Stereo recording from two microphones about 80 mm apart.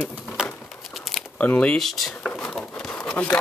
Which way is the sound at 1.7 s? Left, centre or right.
Centre.